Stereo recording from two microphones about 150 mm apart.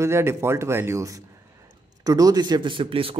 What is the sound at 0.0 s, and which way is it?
Speech, 15° right (ahead or behind).